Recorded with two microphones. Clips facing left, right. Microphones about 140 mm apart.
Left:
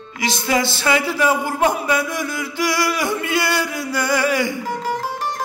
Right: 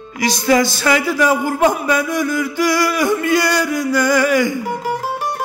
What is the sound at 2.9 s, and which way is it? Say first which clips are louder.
Speech: right 5 dB; 20° left (ahead or behind).